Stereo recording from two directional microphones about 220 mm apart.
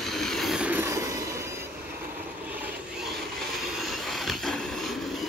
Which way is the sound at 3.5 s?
Centre (ahead or behind).